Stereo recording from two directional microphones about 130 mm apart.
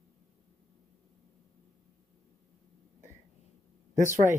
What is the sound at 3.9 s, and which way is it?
Speech, 80° right.